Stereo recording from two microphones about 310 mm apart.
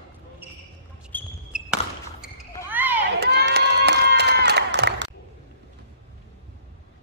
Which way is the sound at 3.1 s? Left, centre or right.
Right.